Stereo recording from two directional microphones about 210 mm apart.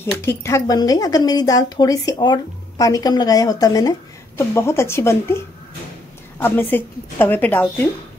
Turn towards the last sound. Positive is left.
turn(degrees=10)  # may be behind; listen again after turning